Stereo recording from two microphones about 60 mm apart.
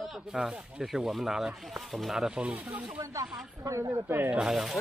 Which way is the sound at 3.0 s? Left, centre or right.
Right.